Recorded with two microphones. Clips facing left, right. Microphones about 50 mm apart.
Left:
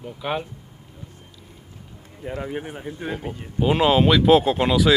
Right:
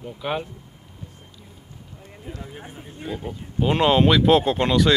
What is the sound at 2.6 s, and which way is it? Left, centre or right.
Speech, left.